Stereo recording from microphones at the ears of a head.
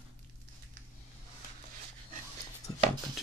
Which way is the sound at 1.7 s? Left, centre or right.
Right.